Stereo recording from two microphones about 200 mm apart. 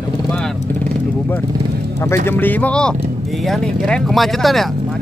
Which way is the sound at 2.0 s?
10° left (ahead or behind).